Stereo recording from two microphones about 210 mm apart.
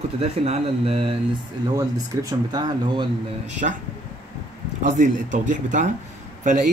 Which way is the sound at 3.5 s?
35° right (ahead or behind).